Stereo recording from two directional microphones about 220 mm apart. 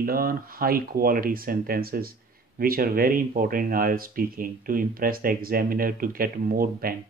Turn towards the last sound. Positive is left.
turn(degrees=-40)  # may be behind; listen again after turning